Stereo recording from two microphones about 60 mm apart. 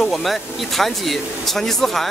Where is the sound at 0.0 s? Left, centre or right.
Centre.